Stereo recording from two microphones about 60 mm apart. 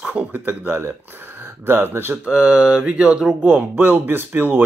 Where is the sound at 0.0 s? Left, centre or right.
Right.